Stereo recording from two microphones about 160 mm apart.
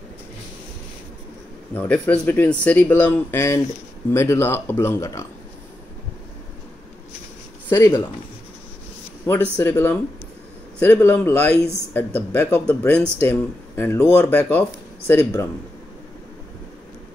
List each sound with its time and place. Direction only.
1.7 s speech: 10° left (ahead or behind)
7.7 s speech: 15° left (ahead or behind)
9.3 s speech: 15° left (ahead or behind)